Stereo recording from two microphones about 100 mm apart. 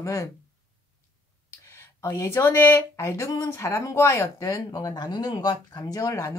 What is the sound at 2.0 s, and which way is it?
Speech, 30° left (ahead or behind).